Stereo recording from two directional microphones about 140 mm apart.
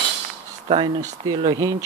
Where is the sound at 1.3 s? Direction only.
30° right (ahead or behind).